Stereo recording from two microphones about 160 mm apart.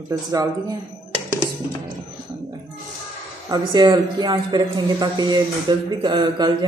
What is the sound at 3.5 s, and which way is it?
Speech, 25° right (ahead or behind).